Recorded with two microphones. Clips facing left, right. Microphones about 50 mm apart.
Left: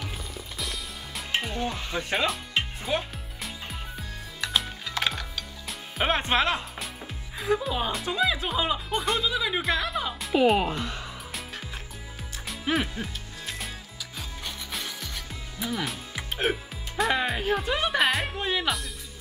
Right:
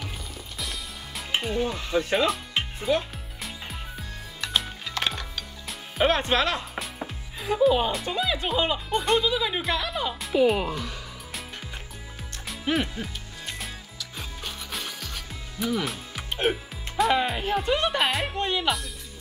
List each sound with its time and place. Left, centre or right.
0.6 s music: centre
3.4 s music: centre
6.0 s speech: centre
7.3 s speech: centre
10.4 s speech: centre
12.4 s music: centre